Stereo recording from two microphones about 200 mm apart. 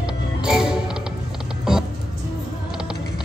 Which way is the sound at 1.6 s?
Centre (ahead or behind).